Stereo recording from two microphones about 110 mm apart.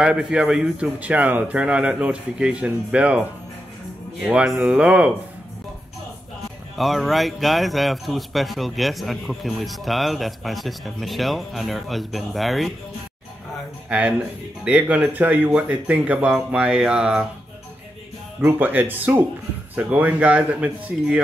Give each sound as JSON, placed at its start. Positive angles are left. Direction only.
{"t": 0.0, "sound": "a man's voice", "side_deg": -5}
{"t": 6.8, "sound": "a man's voice", "side_deg": 0}
{"t": 13.8, "sound": "a man's voice", "side_deg": -10}
{"t": 18.4, "sound": "a man's voice", "side_deg": -15}